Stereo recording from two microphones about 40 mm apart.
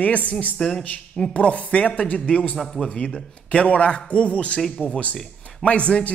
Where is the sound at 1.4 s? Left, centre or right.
Left.